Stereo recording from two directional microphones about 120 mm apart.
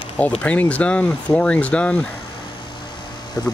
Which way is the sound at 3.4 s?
25° left (ahead or behind).